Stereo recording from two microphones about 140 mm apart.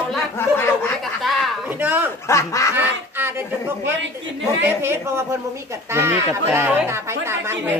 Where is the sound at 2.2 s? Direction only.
20° left (ahead or behind).